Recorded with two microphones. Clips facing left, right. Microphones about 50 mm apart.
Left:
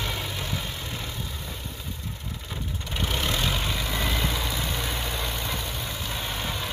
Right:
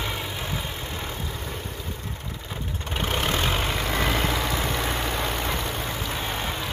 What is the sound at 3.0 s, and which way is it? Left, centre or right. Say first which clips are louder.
Vehicle: right 2 dB; right.